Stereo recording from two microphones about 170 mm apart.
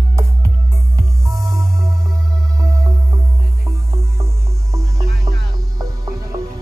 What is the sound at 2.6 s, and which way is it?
Music, 20° right (ahead or behind).